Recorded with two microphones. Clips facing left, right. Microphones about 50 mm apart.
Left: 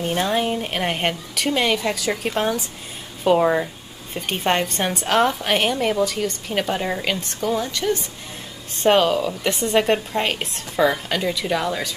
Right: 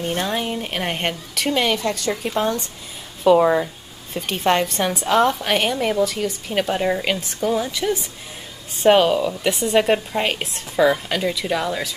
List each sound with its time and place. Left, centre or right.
0.0 s a woman's voice: centre
1.8 s a woman's voice: centre
4.3 s speech: centre
5.1 s a woman's voice: centre